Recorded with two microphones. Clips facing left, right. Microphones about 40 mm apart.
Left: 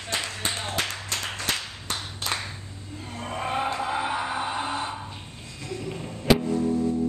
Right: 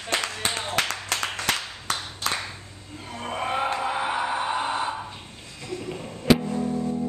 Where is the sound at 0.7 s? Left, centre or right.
Right.